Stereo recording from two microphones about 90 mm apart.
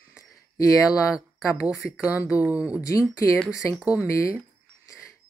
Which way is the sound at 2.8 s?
40° left (ahead or behind).